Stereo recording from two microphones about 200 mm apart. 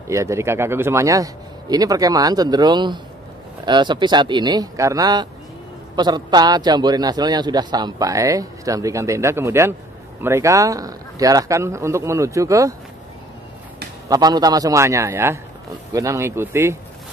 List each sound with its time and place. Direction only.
0.1 s a man's voice: 15° right (ahead or behind)
14.0 s speech: 20° right (ahead or behind)